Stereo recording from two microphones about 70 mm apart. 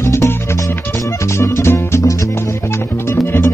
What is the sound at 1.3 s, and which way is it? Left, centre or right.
Music, left.